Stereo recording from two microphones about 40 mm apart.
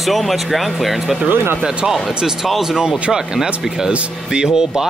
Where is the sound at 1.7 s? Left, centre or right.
Centre.